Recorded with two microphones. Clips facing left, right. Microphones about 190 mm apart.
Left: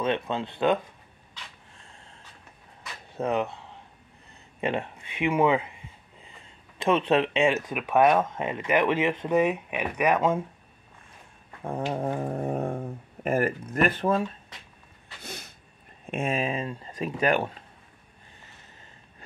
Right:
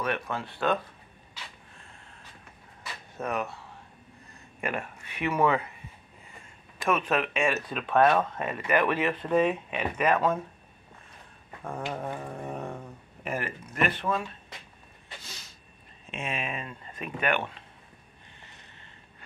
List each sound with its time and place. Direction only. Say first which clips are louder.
0.0 s speech: left 4 dB; 20° left (ahead or behind)
3.2 s speech: left 5 dB; 20° left (ahead or behind)
6.8 s speech: left 4 dB; 25° left (ahead or behind)
11.7 s speech: left 5 dB; 35° left (ahead or behind)
15.2 s a sound: left 8 dB; 60° left (ahead or behind)
16.1 s speech: left 7 dB; 50° left (ahead or behind)
16.3 s speech: left 7 dB; 30° left (ahead or behind)